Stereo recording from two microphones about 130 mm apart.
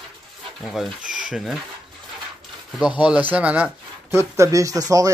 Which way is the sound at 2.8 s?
5° right (ahead or behind).